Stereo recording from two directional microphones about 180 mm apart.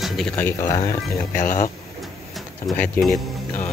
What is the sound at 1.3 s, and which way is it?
Speech, 45° left (ahead or behind).